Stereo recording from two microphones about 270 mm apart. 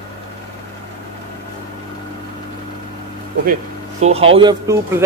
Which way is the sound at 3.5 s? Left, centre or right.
Right.